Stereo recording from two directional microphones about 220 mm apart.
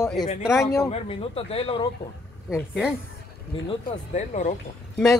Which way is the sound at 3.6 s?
30° left (ahead or behind).